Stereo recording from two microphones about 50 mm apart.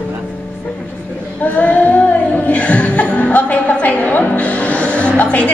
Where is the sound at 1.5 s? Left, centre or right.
Left.